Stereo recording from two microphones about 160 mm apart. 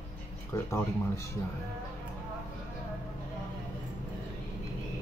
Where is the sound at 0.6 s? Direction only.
20° left (ahead or behind).